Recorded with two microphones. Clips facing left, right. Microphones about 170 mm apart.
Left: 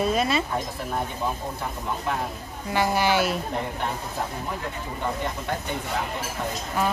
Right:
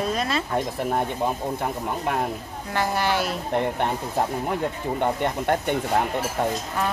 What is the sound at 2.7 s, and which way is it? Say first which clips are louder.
Speech: left 1 dB; centre (ahead or behind).